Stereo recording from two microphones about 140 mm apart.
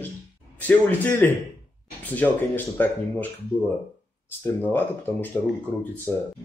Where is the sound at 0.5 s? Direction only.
10° left (ahead or behind).